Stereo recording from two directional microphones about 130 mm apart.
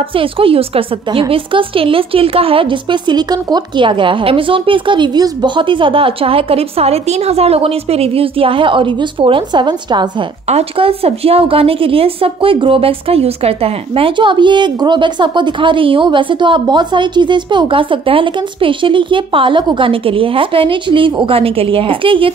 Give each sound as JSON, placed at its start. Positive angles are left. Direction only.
{"t": 0.1, "sound": "a woman's voice", "side_deg": -45}
{"t": 10.5, "sound": "a woman's voice", "side_deg": -50}